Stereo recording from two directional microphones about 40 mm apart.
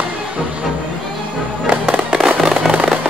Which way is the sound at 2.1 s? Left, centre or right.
Centre.